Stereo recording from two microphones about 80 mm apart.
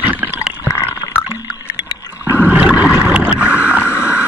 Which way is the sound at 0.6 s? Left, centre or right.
Left.